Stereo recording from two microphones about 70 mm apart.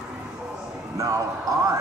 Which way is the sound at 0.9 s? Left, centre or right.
Right.